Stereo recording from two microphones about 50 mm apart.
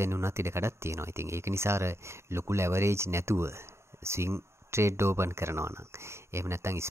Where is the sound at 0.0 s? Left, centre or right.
Right.